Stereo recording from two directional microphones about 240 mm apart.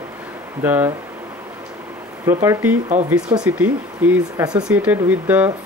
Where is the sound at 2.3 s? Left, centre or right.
Centre.